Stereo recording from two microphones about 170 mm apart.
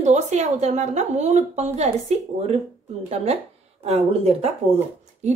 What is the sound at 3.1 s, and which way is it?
A woman's voice, 40° right (ahead or behind).